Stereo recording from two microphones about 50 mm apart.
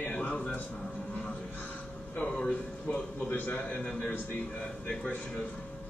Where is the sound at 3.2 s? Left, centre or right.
Left.